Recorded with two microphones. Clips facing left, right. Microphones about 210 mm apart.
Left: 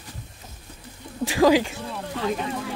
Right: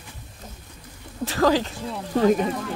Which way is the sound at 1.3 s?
10° left (ahead or behind).